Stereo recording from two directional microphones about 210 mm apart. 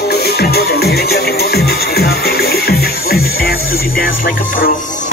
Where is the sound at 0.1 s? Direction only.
50° left (ahead or behind).